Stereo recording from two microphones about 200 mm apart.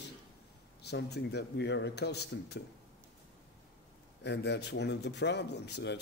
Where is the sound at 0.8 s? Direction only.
55° left (ahead or behind).